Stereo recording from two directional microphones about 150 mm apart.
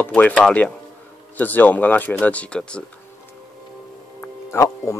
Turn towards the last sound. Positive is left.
turn(degrees=20)  # may be behind; listen again after turning